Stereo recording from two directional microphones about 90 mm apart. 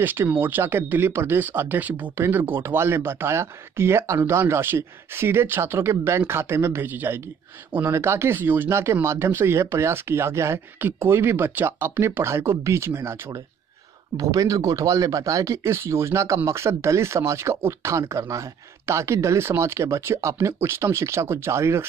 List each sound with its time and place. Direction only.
0.0 s speech: 20° right (ahead or behind)
14.1 s speech: 45° right (ahead or behind)